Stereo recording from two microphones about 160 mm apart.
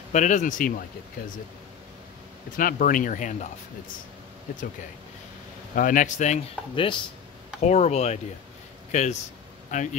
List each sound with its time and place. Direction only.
0.1 s speech: 50° left (ahead or behind)
2.5 s speech: 60° left (ahead or behind)
5.8 s speech: 55° left (ahead or behind)
6.7 s speech: 30° left (ahead or behind)
7.6 s speech: 45° left (ahead or behind)
9.7 s speech: 50° left (ahead or behind)